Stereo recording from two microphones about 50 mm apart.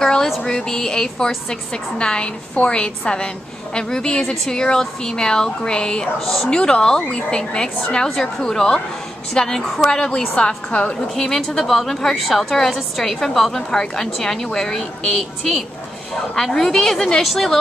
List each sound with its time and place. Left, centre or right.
0.0 s a sound: centre
0.4 s a woman's voice: centre
6.1 s a woman's voice: centre
6.5 s a woman's voice: centre
11.1 s a woman's voice: centre